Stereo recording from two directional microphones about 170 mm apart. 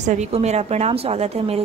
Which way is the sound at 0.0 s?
45° right (ahead or behind).